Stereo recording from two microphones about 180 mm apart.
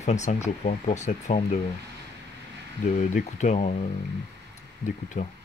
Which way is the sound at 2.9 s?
45° left (ahead or behind).